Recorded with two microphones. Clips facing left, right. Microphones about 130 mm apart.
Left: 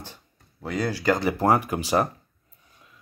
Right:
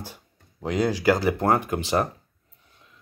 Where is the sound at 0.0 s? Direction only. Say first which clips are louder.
Right 3 dB; 15° right (ahead or behind).